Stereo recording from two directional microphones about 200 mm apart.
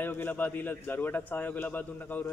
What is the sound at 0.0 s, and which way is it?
A man's voice, 10° left (ahead or behind).